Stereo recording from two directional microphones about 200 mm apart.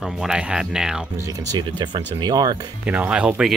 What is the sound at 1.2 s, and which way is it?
Speech, 15° right (ahead or behind).